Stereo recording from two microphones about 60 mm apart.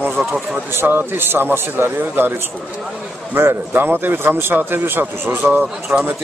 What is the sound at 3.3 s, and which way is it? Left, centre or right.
A man's voice, right.